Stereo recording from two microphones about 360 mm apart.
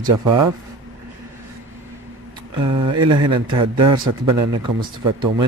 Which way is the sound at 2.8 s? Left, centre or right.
Centre.